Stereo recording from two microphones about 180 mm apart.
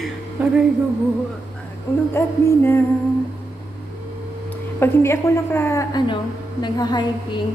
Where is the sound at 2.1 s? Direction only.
15° left (ahead or behind).